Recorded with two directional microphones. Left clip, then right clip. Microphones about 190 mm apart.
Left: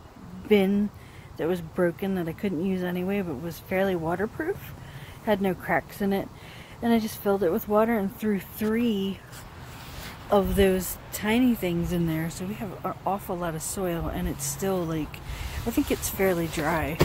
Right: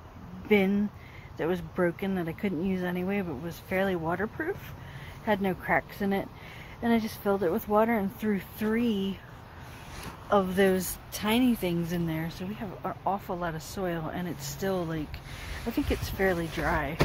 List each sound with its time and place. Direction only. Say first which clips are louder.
0.5 s speech: left 3 dB; 15° left (ahead or behind)
1.4 s speech: left 3 dB; 5° left (ahead or behind)
10.3 s speech: left 2 dB; 10° left (ahead or behind)
10.7 s speech: left 2 dB; centre (ahead or behind)
11.9 s speech: left 4 dB; 15° left (ahead or behind)
12.8 s speech: left 2 dB; centre (ahead or behind)